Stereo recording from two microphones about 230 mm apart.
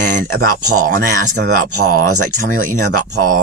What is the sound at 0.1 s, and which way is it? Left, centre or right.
Speech, right.